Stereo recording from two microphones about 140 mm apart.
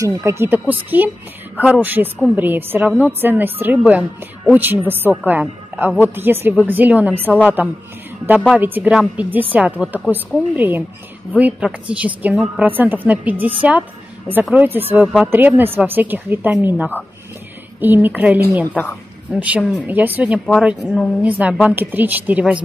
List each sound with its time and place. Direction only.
0.0 s a woman's voice: 20° right (ahead or behind)
20.3 s speech: 10° left (ahead or behind)
20.8 s speech: 10° right (ahead or behind)